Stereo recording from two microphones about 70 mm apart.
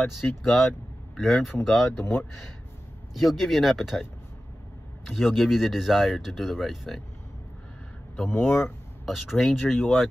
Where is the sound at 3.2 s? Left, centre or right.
Centre.